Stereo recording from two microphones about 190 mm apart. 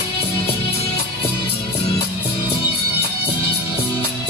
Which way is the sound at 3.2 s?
30° left (ahead or behind).